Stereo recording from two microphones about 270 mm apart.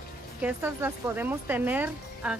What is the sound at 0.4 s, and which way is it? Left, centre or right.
A woman's voice, centre.